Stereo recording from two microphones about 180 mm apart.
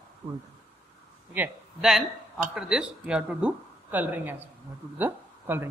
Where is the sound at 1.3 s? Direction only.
5° right (ahead or behind).